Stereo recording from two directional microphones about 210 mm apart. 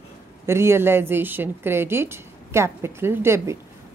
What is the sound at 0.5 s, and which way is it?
Speech, 10° right (ahead or behind).